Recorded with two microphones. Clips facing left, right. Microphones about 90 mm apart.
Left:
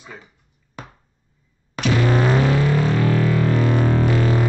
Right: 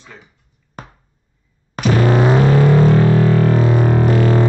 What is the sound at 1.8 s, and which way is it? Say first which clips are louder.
Music: right 3 dB; 45° right (ahead or behind).